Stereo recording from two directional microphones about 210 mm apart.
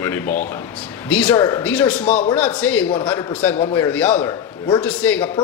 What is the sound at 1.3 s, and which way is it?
Speech, 20° left (ahead or behind).